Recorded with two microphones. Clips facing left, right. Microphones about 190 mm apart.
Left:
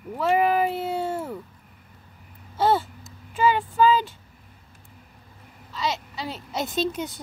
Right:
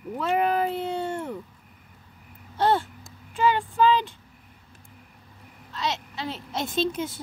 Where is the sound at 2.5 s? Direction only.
5° left (ahead or behind).